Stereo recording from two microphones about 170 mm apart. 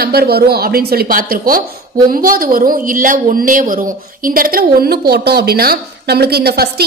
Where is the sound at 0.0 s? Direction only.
65° right (ahead or behind).